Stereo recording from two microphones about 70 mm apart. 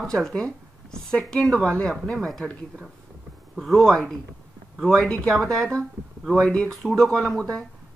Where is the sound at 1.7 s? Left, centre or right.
Centre.